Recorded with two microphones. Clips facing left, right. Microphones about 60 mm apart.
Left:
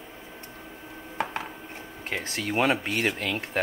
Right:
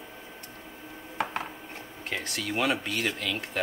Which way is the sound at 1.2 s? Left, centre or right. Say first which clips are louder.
Even; centre.